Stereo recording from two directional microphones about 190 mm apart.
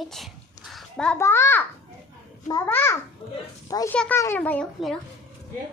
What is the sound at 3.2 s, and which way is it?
Speech, 30° left (ahead or behind).